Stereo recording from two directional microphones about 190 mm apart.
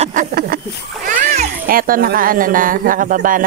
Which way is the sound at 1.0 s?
40° right (ahead or behind).